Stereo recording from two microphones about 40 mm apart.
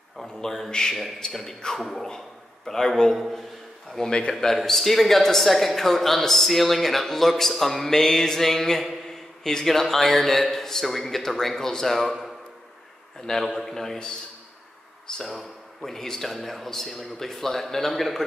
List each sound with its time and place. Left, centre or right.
0.4 s speech: centre
0.7 s a man's voice: centre
1.8 s a man's voice: centre
2.0 s a man's voice: centre
4.3 s speech: centre
4.6 s a man's voice: centre
13.3 s speech: centre
15.2 s a man's voice: centre